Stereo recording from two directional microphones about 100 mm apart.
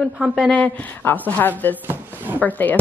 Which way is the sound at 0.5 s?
15° left (ahead or behind).